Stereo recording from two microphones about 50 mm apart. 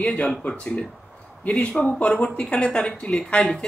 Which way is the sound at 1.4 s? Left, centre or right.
Left.